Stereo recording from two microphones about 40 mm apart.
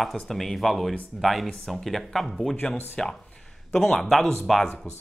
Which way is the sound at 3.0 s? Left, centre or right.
Centre.